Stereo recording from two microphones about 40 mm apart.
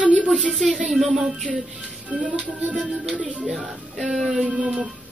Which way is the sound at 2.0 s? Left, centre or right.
Right.